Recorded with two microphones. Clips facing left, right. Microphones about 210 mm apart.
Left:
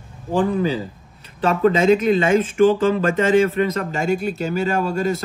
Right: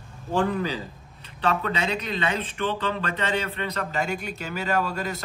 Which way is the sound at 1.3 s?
45° left (ahead or behind).